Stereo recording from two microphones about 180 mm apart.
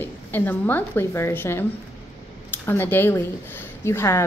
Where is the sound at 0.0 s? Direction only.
10° left (ahead or behind).